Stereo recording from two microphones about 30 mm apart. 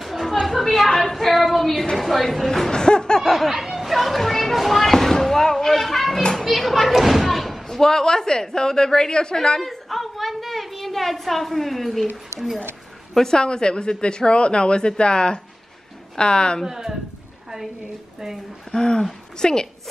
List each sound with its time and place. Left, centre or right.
0.2 s chatter: centre
0.8 s a sound: centre
1.1 s child singing: centre
2.0 s a woman's voice: centre
2.7 s laughter: left
3.2 s speech: centre
3.5 s children playing: centre
4.6 s a sound: centre
6.4 s children playing: centre
7.6 s speech: centre
9.6 s a sound: centre
13.1 s speech: centre
16.6 s speech: centre
18.7 s speech: left